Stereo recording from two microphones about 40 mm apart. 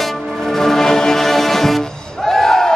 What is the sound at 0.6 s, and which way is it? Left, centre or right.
Music, centre.